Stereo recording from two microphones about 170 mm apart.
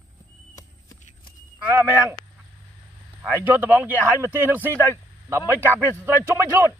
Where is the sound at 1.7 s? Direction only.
20° right (ahead or behind).